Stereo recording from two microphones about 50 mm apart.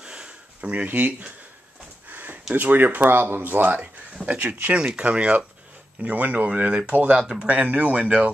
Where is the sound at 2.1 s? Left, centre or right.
Right.